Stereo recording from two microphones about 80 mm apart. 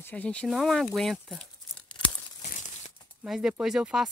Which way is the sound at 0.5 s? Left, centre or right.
Centre.